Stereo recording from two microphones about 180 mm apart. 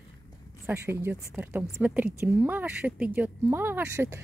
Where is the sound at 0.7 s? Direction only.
10° right (ahead or behind).